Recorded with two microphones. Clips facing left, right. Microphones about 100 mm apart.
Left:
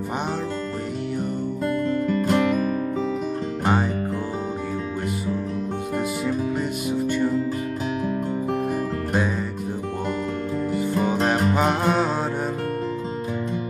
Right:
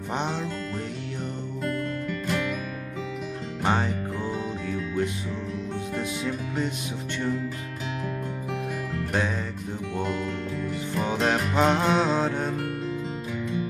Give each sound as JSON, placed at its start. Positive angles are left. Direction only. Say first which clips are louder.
{"t": 1.9, "sound": "music", "louder": "left 8 dB", "side_deg": 35}
{"t": 5.9, "sound": "music", "louder": "left 6 dB", "side_deg": 5}
{"t": 10.8, "sound": "music", "louder": "left 3 dB", "side_deg": 5}